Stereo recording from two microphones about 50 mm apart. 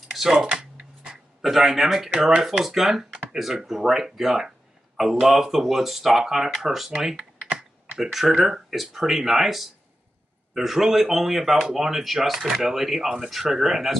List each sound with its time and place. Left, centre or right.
0.1 s speech: centre
0.6 s a sound: centre
1.4 s speech: centre
7.5 s computer keyboard: centre
8.8 s speech: centre